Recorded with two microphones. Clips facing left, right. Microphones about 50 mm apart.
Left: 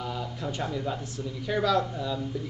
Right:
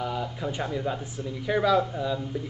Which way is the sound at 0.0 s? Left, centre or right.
Centre.